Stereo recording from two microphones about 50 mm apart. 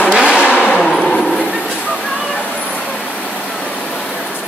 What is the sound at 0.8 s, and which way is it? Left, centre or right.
Vehicle, centre.